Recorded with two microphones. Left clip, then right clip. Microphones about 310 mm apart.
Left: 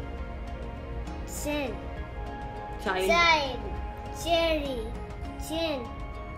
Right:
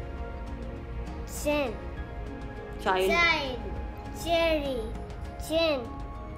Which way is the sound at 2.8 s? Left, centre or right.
Centre.